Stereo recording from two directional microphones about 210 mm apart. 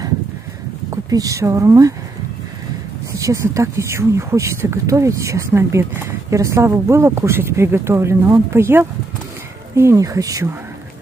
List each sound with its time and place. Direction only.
0.8 s speech: 15° right (ahead or behind)
3.1 s speech: 15° right (ahead or behind)